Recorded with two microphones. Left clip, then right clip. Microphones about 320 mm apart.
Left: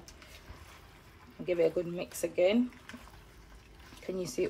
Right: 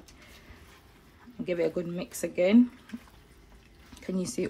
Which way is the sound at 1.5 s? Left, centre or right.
Right.